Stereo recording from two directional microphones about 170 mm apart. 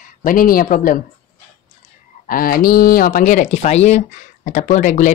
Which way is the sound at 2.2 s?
55° left (ahead or behind).